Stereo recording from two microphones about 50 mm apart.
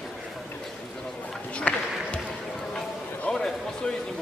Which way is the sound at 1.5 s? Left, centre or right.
Left.